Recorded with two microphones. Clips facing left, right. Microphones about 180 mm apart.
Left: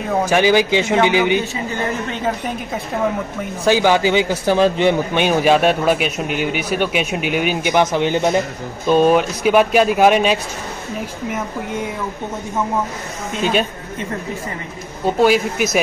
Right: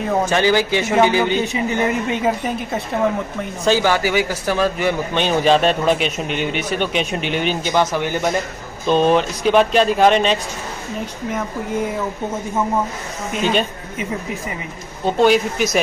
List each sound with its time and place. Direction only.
0.3 s speech: 15° left (ahead or behind)
1.4 s speech: 15° right (ahead or behind)
2.2 s a woman's voice: centre (ahead or behind)
3.6 s speech: 15° left (ahead or behind)
5.1 s speech: 10° left (ahead or behind)
8.8 s speech: 10° left (ahead or behind)
13.4 s a woman's voice: 5° left (ahead or behind)
15.0 s speech: 5° left (ahead or behind)